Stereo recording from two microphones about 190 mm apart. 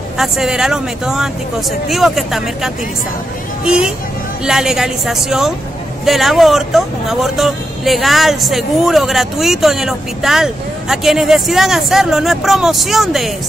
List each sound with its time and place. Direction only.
0.2 s speech: centre (ahead or behind)